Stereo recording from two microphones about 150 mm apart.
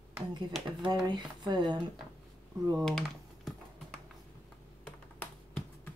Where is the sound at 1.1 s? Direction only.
30° right (ahead or behind).